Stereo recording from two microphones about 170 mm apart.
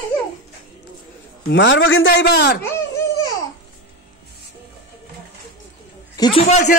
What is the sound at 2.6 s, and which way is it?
Babbling, 20° left (ahead or behind).